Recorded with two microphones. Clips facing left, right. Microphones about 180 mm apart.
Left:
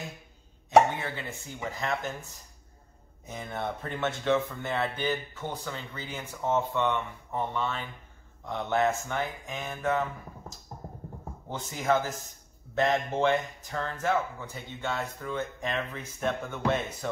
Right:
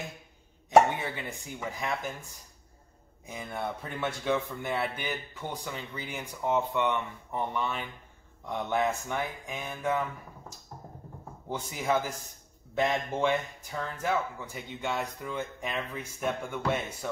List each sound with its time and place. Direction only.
0.9 s speech: 15° right (ahead or behind)
3.3 s speech: 10° right (ahead or behind)
11.4 s speech: 10° right (ahead or behind)